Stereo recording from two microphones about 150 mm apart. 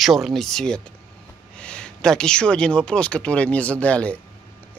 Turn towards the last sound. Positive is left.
turn(degrees=10)  # may be behind; listen again after turning